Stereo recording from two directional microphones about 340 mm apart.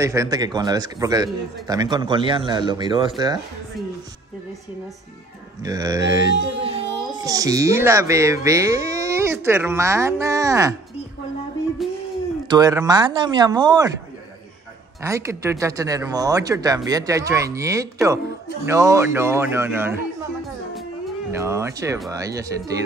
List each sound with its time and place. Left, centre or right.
0.0 s a man's voice: centre
5.6 s a man's voice: centre
6.3 s a sound: right
6.6 s speech: centre
11.8 s a sound: centre
12.4 s a man's voice: centre
15.0 s a man's voice: centre
21.3 s a man's voice: centre